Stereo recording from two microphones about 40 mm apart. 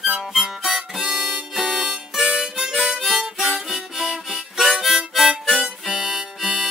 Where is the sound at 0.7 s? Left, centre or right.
Centre.